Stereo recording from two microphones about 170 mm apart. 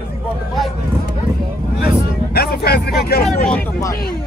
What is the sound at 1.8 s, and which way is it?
Vehicle, 65° left (ahead or behind).